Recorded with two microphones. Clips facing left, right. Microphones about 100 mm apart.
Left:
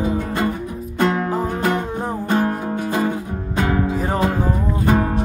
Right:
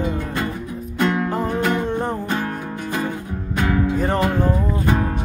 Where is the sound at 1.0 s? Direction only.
35° left (ahead or behind).